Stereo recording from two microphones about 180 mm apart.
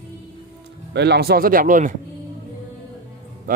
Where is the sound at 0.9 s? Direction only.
70° right (ahead or behind); by 1.9 s 45° right (ahead or behind).